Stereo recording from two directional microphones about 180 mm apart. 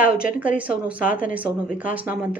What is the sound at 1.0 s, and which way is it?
Speech, 50° left (ahead or behind).